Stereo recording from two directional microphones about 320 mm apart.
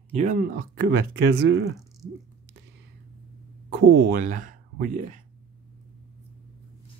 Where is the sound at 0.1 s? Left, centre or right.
Right.